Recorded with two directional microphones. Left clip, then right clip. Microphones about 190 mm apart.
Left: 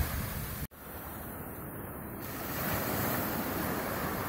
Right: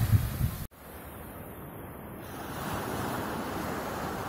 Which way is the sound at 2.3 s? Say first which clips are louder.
Even; 45° left (ahead or behind).